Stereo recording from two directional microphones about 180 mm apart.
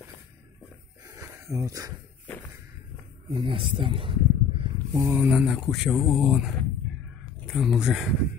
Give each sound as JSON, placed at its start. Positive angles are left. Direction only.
{"t": 1.0, "sound": "a sound", "side_deg": -15}
{"t": 3.3, "sound": "snake", "side_deg": -30}
{"t": 5.0, "sound": "speech", "side_deg": -5}